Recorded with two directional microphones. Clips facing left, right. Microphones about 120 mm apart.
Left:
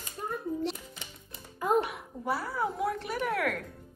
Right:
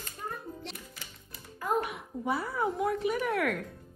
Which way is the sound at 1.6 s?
20° left (ahead or behind).